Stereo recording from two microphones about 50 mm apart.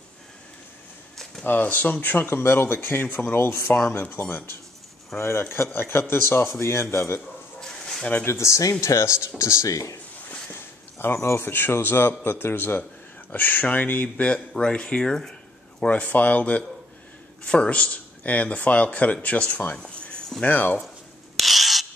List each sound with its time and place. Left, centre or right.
1.4 s speech: left
2.2 s speech: left
5.1 s speech: left
7.6 s a sound: centre
8.3 s speech: left
9.4 s speech: left
10.5 s a sound: left
11.1 s speech: left
11.4 s speech: left
14.0 s speech: left
15.9 s speech: left
19.8 s a sound: centre
20.4 s speech: left
21.4 s rub: centre